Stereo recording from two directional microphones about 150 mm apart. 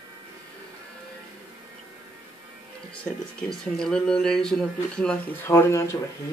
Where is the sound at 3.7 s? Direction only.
5° left (ahead or behind).